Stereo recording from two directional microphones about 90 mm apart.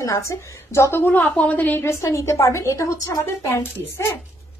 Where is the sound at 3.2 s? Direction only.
30° left (ahead or behind).